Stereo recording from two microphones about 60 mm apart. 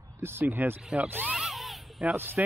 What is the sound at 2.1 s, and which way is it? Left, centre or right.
Speech, right.